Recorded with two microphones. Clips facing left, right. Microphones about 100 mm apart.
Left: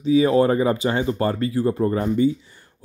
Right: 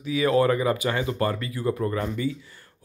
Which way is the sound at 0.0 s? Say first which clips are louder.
Left 5 dB; 25° left (ahead or behind).